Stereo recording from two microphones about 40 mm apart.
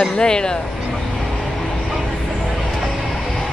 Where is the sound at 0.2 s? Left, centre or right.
Centre.